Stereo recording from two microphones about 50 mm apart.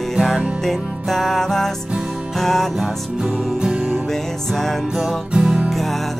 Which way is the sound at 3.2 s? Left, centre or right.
Centre.